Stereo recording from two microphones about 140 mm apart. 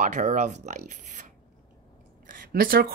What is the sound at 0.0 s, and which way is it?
Speech, 60° right (ahead or behind).